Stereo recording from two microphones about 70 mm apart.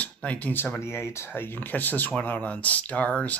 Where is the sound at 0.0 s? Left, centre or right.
Centre.